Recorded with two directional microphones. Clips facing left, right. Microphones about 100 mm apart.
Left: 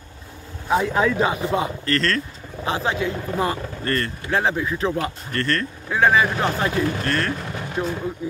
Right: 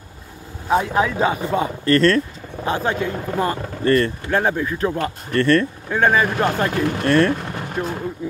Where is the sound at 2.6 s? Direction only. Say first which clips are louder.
Right 2 dB; 45° right (ahead or behind).